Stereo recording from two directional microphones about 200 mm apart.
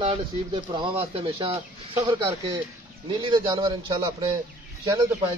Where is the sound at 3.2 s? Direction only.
20° right (ahead or behind).